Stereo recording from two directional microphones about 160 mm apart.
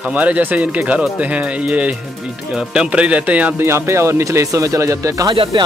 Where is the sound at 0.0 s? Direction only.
10° right (ahead or behind).